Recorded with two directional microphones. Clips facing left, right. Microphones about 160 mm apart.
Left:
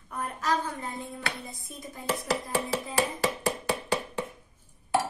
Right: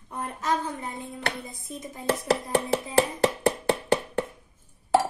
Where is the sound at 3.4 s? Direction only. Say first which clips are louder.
Right 5 dB; 60° right (ahead or behind).